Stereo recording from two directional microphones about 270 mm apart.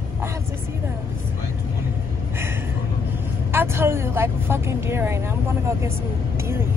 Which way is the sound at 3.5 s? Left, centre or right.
Centre.